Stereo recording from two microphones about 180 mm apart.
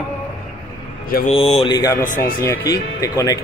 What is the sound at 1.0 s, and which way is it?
Speech, 55° left (ahead or behind).